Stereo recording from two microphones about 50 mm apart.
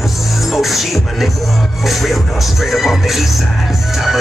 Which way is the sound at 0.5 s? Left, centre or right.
Centre.